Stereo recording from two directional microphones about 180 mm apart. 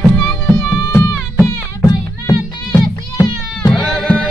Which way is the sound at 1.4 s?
20° left (ahead or behind).